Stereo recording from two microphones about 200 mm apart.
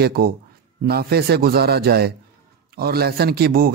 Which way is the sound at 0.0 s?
50° right (ahead or behind).